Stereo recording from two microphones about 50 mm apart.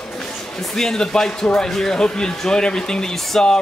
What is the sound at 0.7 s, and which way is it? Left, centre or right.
Speech, centre.